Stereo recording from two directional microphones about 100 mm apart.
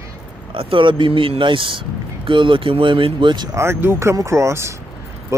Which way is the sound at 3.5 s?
25° right (ahead or behind).